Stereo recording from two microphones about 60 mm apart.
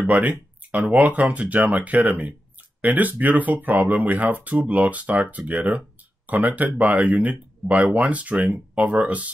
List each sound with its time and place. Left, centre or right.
0.0 s speech: right